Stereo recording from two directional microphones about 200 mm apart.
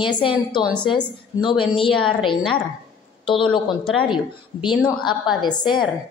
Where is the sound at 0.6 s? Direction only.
Centre (ahead or behind).